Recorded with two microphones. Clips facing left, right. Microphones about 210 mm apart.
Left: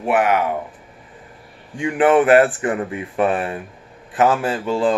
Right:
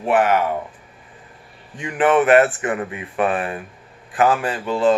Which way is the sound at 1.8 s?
30° left (ahead or behind).